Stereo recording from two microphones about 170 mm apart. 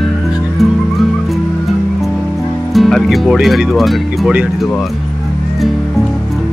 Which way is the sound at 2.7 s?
Centre (ahead or behind).